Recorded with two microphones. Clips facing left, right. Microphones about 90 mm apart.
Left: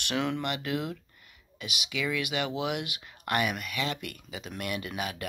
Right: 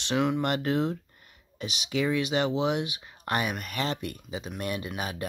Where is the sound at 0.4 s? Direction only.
40° right (ahead or behind).